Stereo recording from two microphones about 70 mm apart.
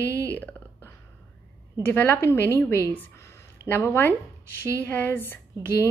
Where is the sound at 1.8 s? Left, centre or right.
Left.